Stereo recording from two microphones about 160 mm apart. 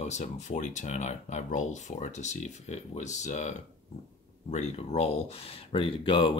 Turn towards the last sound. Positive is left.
turn(degrees=30)  # may be behind; listen again after turning